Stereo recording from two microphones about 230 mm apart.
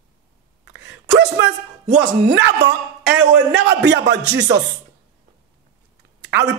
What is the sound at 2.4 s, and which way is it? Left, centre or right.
Speech, right.